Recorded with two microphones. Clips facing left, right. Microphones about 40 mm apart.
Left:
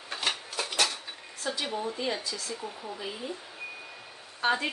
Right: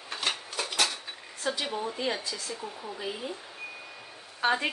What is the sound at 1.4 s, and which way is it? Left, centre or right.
Speech, centre.